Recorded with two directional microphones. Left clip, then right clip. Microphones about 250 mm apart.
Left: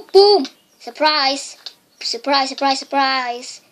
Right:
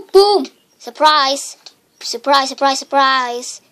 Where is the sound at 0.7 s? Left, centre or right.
Right.